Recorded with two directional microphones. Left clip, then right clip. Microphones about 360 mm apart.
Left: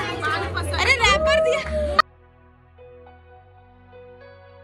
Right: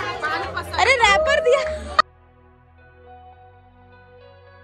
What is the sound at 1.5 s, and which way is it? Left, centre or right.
Music, centre.